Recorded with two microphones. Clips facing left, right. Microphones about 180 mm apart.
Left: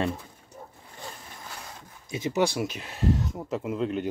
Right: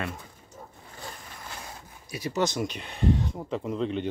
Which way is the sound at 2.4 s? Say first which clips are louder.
Left 1 dB; 5° left (ahead or behind).